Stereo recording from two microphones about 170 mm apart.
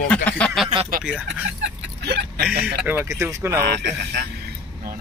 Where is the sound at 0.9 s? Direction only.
60° right (ahead or behind).